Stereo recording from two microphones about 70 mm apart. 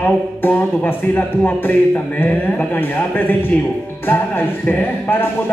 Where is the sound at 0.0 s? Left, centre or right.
Left.